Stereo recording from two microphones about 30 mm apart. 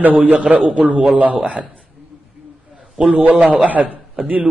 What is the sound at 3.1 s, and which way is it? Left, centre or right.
Speech, right.